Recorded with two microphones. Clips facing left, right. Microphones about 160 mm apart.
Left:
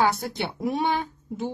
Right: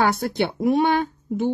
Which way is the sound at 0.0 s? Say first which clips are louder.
Right 3 dB; 60° right (ahead or behind).